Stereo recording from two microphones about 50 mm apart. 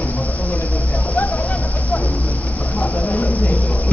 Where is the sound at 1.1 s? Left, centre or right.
Left.